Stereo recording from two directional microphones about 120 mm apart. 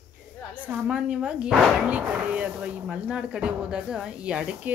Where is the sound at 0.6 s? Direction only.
10° right (ahead or behind).